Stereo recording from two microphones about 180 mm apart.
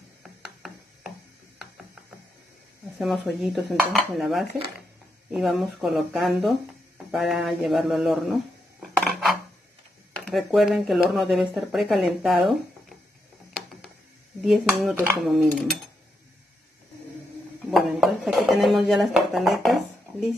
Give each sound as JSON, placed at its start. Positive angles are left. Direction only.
{"t": 0.2, "sound": "a sound", "side_deg": -5}
{"t": 3.0, "sound": "speech", "side_deg": 0}
{"t": 8.8, "sound": "cutlery", "side_deg": 0}
{"t": 10.3, "sound": "speech", "side_deg": 0}
{"t": 14.4, "sound": "speech", "side_deg": 0}
{"t": 17.6, "sound": "dishes", "side_deg": 0}